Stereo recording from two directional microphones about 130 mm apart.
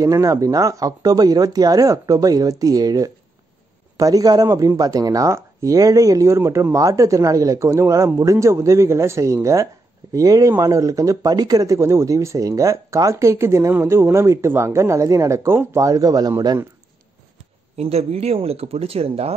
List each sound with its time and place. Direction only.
0.0 s speech: 25° right (ahead or behind)
17.7 s speech: 55° right (ahead or behind)